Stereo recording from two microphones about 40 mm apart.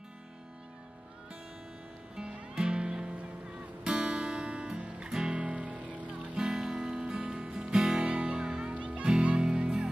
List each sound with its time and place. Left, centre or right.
2.1 s music: right
5.0 s music: right
5.4 s music: right
6.5 s music: centre
8.7 s music: right
9.0 s music: right